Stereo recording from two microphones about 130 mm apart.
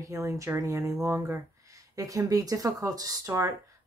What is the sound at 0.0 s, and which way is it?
Speech, 25° right (ahead or behind).